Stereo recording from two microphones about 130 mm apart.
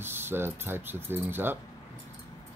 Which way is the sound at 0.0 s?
15° right (ahead or behind).